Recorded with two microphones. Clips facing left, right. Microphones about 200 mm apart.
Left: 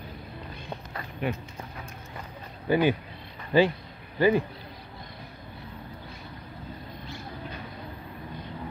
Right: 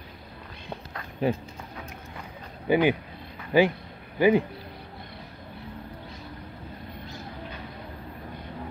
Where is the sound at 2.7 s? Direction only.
15° right (ahead or behind).